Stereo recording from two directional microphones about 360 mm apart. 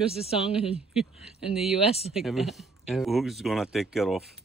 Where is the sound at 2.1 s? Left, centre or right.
Centre.